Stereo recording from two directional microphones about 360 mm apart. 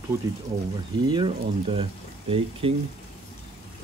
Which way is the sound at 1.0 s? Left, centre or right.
Centre.